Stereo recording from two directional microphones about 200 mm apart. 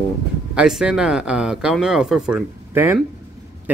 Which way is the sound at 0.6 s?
5° right (ahead or behind).